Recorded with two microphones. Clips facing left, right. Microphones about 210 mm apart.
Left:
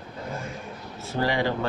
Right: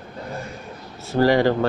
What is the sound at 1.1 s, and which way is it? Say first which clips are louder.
Speech: right 8 dB; 40° right (ahead or behind).